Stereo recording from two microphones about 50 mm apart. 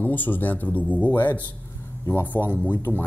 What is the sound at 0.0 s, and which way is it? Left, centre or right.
Speech, left.